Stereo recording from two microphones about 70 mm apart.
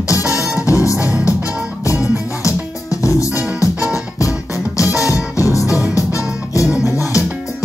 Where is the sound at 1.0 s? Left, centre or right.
Centre.